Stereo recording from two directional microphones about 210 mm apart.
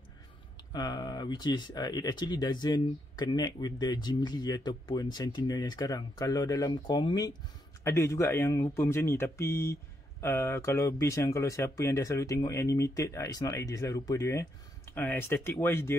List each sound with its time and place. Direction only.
0.7 s speech: 20° left (ahead or behind)